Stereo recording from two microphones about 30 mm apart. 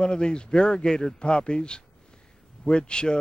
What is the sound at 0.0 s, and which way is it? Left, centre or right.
A man's voice, left.